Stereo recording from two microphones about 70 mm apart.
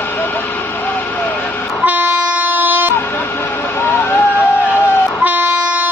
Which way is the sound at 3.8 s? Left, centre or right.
Left.